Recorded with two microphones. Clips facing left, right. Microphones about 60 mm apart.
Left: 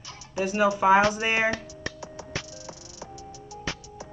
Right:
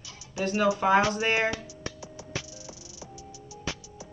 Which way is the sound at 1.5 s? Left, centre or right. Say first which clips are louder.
Left 3 dB; left.